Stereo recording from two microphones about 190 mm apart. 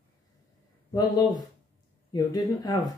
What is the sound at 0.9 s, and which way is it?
Speech, 20° left (ahead or behind).